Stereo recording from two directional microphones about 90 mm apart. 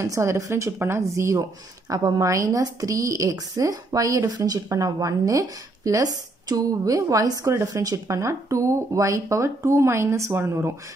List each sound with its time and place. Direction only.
0.0 s speech: 35° right (ahead or behind)